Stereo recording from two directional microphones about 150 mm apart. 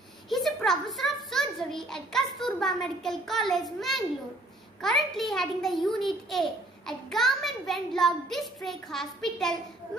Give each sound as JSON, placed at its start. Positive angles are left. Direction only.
{"t": 0.3, "sound": "a child's voice", "side_deg": 0}